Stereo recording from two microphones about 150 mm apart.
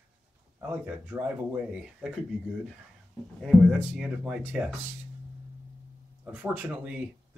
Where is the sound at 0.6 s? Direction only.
10° right (ahead or behind).